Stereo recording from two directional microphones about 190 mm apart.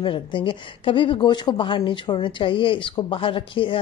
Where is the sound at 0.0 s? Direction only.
25° left (ahead or behind).